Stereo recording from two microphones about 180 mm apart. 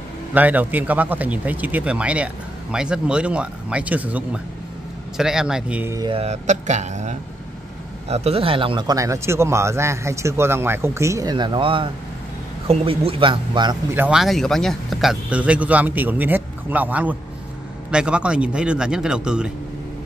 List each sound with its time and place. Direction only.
0.3 s a man's voice: 10° right (ahead or behind)
5.9 s a man's voice: 30° right (ahead or behind)
13.9 s a man's voice: 5° right (ahead or behind)